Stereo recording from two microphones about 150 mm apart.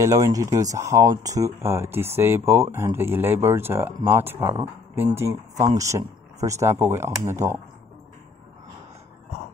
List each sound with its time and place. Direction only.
0.0 s speech: 20° right (ahead or behind)